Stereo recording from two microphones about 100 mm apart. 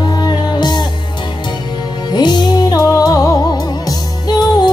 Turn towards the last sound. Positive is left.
turn(degrees=45)  # may be behind; listen again after turning